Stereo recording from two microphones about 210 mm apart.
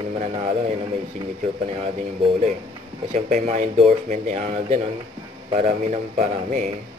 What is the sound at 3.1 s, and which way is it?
A man's voice, 35° right (ahead or behind).